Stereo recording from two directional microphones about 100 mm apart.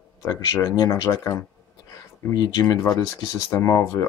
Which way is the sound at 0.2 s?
30° left (ahead or behind).